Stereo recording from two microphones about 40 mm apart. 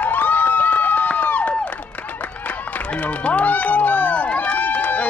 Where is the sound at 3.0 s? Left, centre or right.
Left.